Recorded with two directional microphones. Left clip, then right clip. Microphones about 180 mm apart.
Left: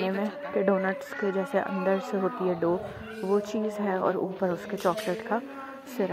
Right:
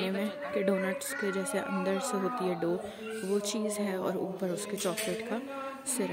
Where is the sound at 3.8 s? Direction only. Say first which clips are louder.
Left 6 dB; 10° right (ahead or behind).